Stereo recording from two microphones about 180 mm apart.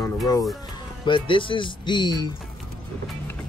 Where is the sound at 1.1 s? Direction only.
30° left (ahead or behind).